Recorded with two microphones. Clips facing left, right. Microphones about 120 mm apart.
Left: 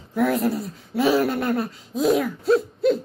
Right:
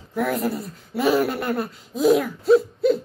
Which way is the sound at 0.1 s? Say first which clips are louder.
Left 2 dB; centre (ahead or behind).